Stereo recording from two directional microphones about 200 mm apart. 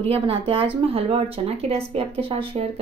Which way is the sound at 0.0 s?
30° right (ahead or behind).